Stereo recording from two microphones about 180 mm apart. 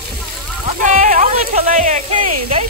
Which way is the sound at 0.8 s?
45° right (ahead or behind).